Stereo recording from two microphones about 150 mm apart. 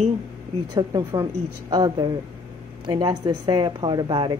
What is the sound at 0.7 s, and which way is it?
Speech, 25° right (ahead or behind).